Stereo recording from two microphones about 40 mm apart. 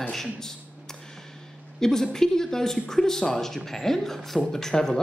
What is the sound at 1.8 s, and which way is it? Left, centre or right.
A woman's voice, centre.